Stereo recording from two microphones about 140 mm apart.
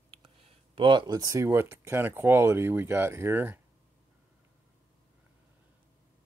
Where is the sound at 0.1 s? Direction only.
40° right (ahead or behind); by 3.6 s 15° right (ahead or behind).